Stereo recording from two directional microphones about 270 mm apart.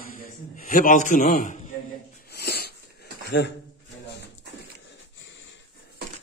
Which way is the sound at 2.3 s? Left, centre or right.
Left.